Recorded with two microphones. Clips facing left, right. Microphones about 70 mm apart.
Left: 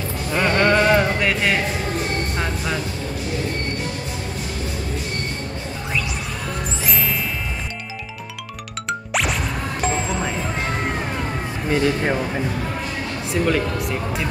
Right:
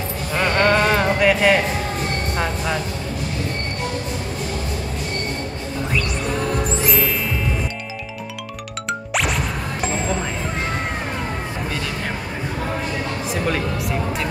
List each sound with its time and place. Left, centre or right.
0.3 s music: centre
9.1 s music: centre
11.7 s a sound: left